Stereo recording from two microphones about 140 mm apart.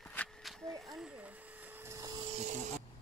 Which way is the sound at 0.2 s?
10° left (ahead or behind).